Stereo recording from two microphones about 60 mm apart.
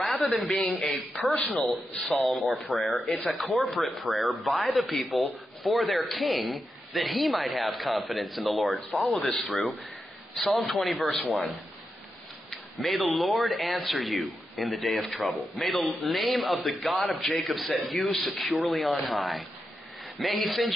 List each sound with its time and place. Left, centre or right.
0.4 s speech: centre
1.3 s a man's voice: left
1.6 s speech: centre
2.6 s a man's voice: left
3.2 s speech: centre
12.4 s a sound: centre
13.2 s speech: centre